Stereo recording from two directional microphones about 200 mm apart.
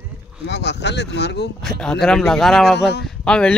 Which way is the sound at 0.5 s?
60° left (ahead or behind).